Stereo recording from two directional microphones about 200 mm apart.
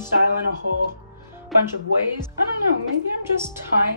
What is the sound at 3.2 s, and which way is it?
Speech, 10° right (ahead or behind).